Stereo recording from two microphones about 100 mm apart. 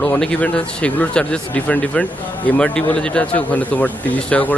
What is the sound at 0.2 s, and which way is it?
Speech, 10° left (ahead or behind).